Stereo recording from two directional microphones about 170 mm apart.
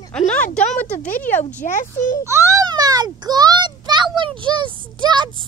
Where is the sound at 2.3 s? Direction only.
15° right (ahead or behind).